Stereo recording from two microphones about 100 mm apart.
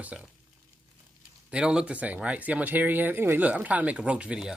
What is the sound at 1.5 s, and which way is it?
Speech, 10° right (ahead or behind).